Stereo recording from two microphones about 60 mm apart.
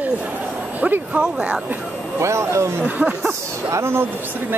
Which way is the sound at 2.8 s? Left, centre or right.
Right.